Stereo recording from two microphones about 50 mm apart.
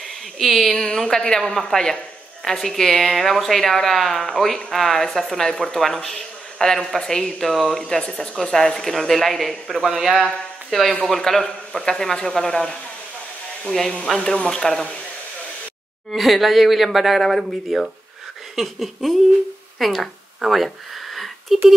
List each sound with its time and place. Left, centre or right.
0.4 s speech: centre
0.9 s speech: centre
7.8 s a man's voice: centre
16.1 s speech: centre
20.3 s a sound: centre